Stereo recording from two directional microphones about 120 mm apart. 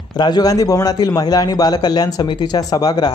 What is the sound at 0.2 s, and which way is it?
Speech, 35° left (ahead or behind).